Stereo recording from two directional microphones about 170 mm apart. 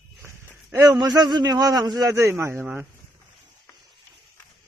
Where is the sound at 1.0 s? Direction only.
25° right (ahead or behind).